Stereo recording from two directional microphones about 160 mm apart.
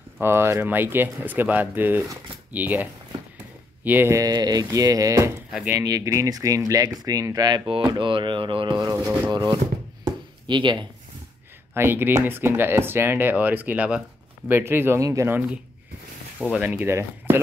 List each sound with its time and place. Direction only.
0.2 s speech: 15° right (ahead or behind)
5.5 s speech: 5° right (ahead or behind)
5.8 s speech: 20° right (ahead or behind)
10.0 s a sound: 30° right (ahead or behind)
11.7 s speech: 15° right (ahead or behind)